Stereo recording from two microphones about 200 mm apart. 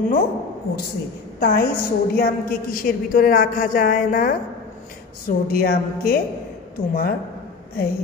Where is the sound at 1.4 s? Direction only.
50° left (ahead or behind).